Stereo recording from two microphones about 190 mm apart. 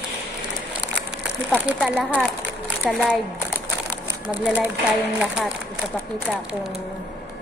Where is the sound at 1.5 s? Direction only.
5° left (ahead or behind).